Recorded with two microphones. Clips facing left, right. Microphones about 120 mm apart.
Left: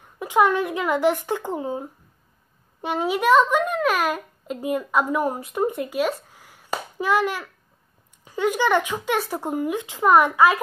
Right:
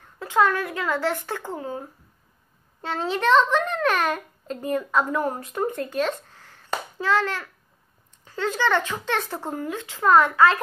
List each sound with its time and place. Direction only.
0.0 s a child's voice: 15° left (ahead or behind)